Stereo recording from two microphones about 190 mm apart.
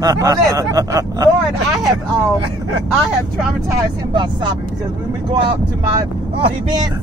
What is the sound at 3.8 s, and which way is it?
Speech, 25° right (ahead or behind).